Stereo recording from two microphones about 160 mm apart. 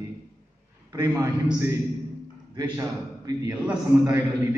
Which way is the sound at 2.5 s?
20° right (ahead or behind).